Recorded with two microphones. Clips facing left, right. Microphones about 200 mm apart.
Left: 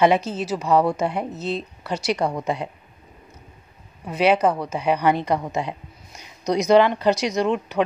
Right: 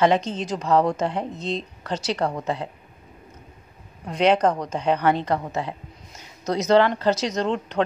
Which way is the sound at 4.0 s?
5° left (ahead or behind).